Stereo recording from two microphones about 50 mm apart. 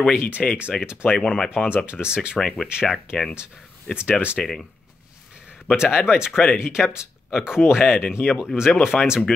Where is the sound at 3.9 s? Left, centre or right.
Right.